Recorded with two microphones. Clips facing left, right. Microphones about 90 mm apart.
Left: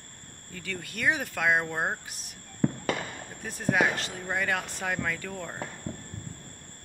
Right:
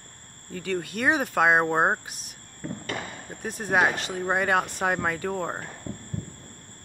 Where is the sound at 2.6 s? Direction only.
90° left.